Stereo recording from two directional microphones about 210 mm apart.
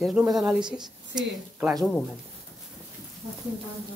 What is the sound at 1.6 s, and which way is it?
Speech, centre (ahead or behind).